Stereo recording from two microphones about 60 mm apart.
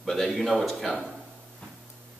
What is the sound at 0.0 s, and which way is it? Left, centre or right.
A man's voice, centre.